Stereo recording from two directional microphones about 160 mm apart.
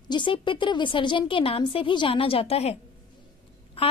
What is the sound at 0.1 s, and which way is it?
A woman's voice, 30° left (ahead or behind).